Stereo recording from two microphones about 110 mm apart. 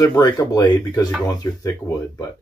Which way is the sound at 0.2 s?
35° left (ahead or behind).